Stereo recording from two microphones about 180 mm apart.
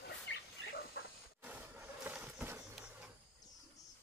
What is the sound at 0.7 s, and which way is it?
Dog, 60° left (ahead or behind).